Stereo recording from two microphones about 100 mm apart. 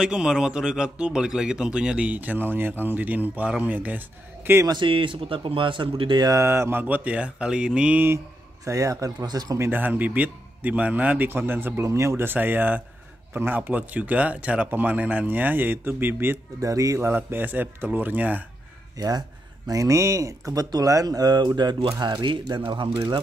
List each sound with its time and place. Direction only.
0.0 s speech: 10° right (ahead or behind)
4.6 s speech: 55° right (ahead or behind)
6.2 s speech: 30° right (ahead or behind)
8.6 s speech: 30° right (ahead or behind)
9.6 s a man's voice: 20° right (ahead or behind)
16.6 s a man's voice: 35° right (ahead or behind); by 18.4 s 15° right (ahead or behind)
18.9 s speech: 40° right (ahead or behind); by 22.8 s 55° right (ahead or behind)